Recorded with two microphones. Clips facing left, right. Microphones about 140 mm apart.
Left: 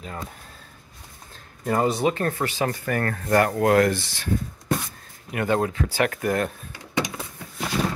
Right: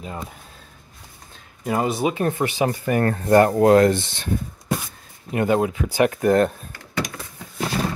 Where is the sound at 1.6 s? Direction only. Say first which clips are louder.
Even; 5° right (ahead or behind); by 6.5 s 30° right (ahead or behind).